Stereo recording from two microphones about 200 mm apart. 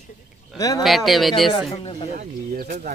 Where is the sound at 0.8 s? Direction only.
Centre (ahead or behind).